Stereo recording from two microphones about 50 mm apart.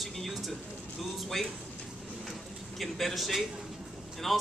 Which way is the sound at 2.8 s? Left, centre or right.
Centre.